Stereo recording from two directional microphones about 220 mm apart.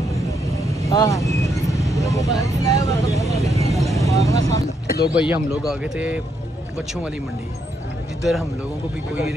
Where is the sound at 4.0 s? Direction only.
15° left (ahead or behind).